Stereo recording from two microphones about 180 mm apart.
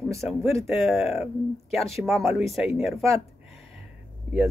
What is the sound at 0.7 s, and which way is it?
Speech, centre (ahead or behind).